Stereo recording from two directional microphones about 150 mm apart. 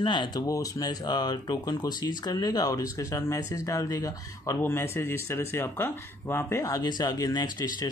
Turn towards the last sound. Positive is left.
turn(degrees=25)  # may be behind; listen again after turning